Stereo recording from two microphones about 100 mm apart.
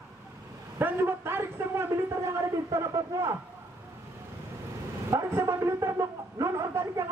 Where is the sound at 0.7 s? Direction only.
20° right (ahead or behind).